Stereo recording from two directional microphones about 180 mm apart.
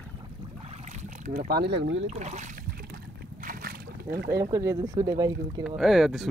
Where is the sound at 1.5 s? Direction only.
70° right (ahead or behind); by 2.1 s 85° right.